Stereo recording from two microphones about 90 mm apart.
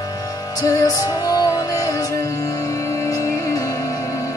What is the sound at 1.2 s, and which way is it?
Music, 40° left (ahead or behind).